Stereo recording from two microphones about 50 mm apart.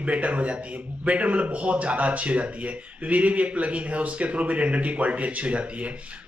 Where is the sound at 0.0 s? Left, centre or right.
Right.